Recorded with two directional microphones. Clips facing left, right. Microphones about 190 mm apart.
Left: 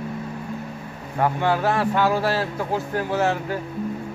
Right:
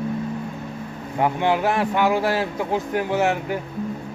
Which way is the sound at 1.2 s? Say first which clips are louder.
Right 1 dB; 15° right (ahead or behind).